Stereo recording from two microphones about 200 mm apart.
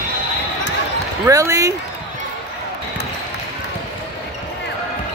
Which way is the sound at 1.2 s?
15° right (ahead or behind).